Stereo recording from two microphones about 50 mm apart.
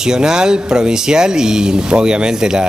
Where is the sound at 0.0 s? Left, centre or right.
Centre.